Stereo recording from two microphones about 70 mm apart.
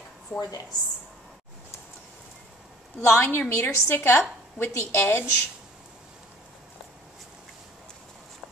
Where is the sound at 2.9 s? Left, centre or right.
Left.